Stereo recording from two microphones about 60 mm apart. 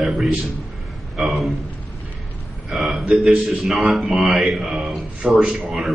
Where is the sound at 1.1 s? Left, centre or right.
Centre.